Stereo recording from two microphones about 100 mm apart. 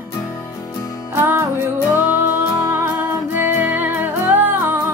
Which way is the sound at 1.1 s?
25° right (ahead or behind).